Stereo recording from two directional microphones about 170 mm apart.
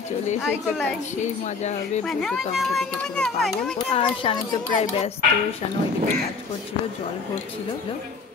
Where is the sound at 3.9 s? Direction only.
30° left (ahead or behind).